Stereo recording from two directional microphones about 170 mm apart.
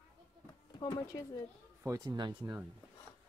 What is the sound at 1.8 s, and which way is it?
Speech, 20° right (ahead or behind).